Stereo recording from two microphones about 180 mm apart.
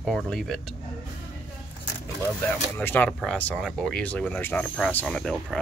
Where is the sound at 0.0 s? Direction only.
Centre (ahead or behind).